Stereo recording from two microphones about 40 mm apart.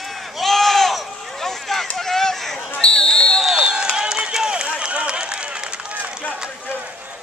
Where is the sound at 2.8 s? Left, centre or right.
Centre.